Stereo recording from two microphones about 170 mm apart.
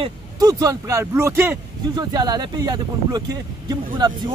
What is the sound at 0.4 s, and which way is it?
Speech, 20° right (ahead or behind).